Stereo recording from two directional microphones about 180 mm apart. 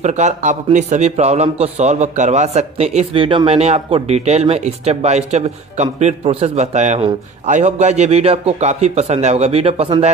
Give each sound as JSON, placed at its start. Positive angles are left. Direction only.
{"t": 0.0, "sound": "a man's voice", "side_deg": -40}